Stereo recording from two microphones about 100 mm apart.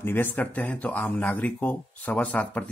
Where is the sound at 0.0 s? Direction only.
20° left (ahead or behind).